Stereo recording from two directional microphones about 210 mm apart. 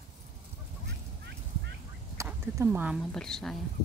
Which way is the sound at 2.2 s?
15° right (ahead or behind).